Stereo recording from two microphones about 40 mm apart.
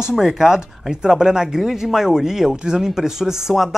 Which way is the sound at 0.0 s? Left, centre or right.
Centre.